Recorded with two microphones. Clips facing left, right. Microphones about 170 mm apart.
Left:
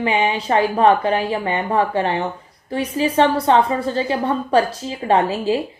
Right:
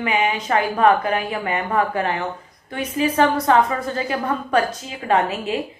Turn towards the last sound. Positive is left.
turn(degrees=30)  # may be behind; listen again after turning